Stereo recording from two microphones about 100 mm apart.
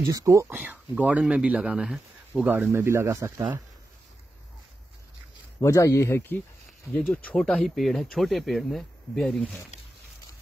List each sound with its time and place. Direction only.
0.1 s speech: 30° right (ahead or behind)
0.6 s speech: 15° right (ahead or behind)
2.7 s speech: 25° right (ahead or behind)
5.6 s speech: 30° left (ahead or behind)
6.9 s speech: 5° left (ahead or behind)